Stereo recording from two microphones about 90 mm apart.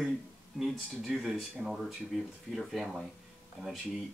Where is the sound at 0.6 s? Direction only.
Centre (ahead or behind).